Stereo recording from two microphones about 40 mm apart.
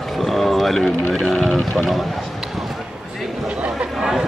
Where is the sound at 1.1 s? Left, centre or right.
Left.